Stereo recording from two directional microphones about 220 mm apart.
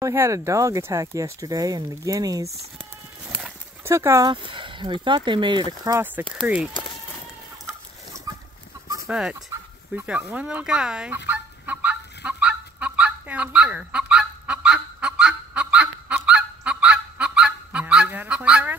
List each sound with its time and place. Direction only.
0.0 s speech: 15° right (ahead or behind)
9.0 s speech: 5° right (ahead or behind)
11.2 s goose: 5° right (ahead or behind)